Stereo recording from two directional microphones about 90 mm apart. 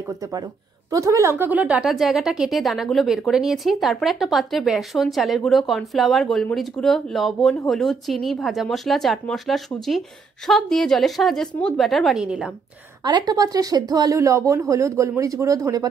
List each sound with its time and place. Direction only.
0.9 s speech: 35° right (ahead or behind)
1.4 s speech: 15° right (ahead or behind)
1.9 s speech: centre (ahead or behind)
13.0 s speech: 50° right (ahead or behind)